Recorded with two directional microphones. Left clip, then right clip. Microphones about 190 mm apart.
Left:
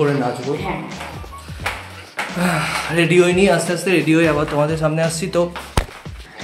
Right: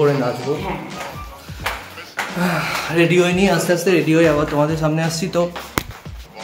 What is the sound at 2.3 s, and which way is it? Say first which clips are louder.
Speech: left 1 dB; 10° left (ahead or behind).